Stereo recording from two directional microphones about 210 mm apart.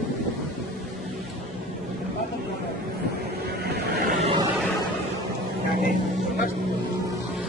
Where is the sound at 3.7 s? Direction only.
50° right (ahead or behind).